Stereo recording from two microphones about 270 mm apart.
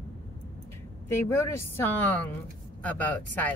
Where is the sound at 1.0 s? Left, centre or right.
Centre.